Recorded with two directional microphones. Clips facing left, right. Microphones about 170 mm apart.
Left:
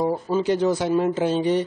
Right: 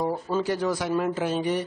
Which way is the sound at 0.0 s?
15° left (ahead or behind).